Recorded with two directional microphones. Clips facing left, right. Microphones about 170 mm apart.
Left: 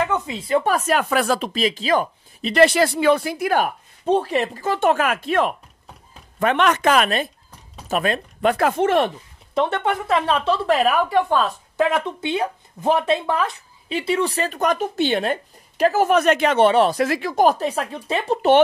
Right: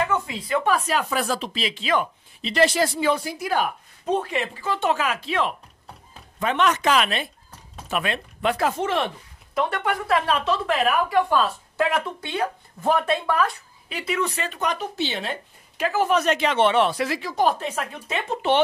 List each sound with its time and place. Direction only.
0.0 s a sound: 20° left (ahead or behind)
0.7 s speech: 45° left (ahead or behind)
1.1 s speech: 65° left (ahead or behind)
1.5 s speech: 45° left (ahead or behind)
2.5 s speech: 60° left (ahead or behind)
4.0 s speech: 30° left (ahead or behind); by 9.1 s 50° left (ahead or behind)
9.5 s speech: 25° left (ahead or behind)
11.2 s speech: 20° left (ahead or behind); by 18.5 s 35° left (ahead or behind)